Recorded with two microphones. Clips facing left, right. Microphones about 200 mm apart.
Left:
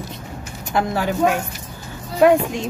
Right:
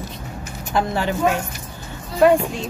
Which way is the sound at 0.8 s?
10° left (ahead or behind).